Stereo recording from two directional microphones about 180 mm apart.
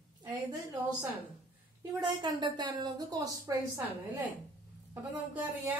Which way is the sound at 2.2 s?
25° right (ahead or behind).